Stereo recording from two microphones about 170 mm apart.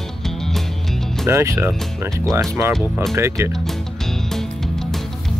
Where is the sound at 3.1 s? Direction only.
15° right (ahead or behind).